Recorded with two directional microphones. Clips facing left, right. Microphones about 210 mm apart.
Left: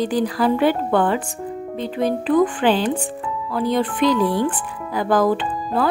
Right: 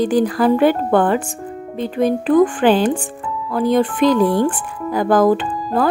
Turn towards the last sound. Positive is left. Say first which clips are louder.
# right 3 dB
turn(degrees=-45)  # may be behind; listen again after turning